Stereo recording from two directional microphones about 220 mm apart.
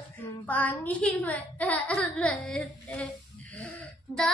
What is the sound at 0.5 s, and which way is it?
A child's voice, 5° left (ahead or behind).